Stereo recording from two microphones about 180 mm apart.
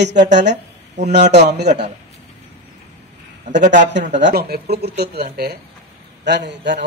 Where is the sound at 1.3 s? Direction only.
65° right (ahead or behind).